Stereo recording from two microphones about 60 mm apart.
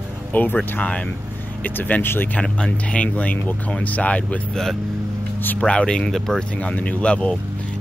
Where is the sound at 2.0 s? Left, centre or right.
Left.